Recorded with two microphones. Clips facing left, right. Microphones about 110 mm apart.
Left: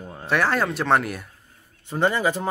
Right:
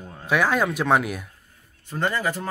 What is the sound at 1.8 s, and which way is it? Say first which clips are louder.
Speech: left 3 dB; 15° left (ahead or behind).